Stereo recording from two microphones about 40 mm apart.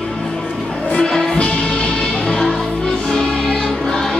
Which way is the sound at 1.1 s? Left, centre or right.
Centre.